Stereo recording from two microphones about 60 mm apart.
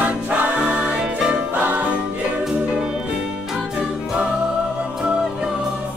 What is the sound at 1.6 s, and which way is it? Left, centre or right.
Music, right.